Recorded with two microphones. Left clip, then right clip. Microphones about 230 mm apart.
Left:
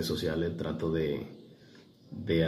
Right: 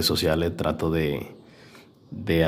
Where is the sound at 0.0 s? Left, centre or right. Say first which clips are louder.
Right 9 dB; right.